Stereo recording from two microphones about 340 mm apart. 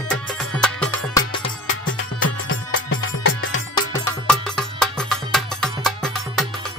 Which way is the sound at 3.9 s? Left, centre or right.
Centre.